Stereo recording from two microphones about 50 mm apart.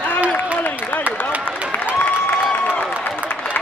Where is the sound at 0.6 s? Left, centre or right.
Left.